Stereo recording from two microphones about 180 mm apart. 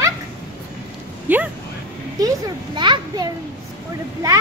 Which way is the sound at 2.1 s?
20° right (ahead or behind).